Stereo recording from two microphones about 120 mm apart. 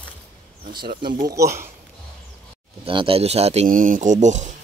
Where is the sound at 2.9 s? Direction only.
50° right (ahead or behind); by 4.5 s 80° right.